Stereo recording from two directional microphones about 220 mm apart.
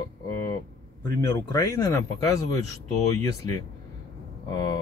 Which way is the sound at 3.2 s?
15° left (ahead or behind).